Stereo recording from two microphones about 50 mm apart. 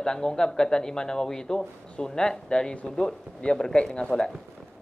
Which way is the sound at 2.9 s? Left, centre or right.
Centre.